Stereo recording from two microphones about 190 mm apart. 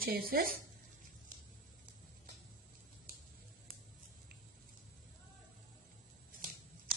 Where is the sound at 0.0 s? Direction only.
50° right (ahead or behind).